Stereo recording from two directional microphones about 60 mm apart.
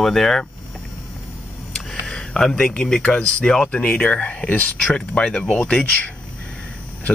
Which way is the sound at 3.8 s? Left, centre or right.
Left.